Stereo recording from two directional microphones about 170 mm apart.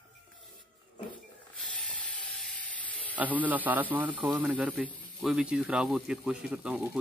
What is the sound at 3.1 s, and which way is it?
A man's voice, 10° right (ahead or behind).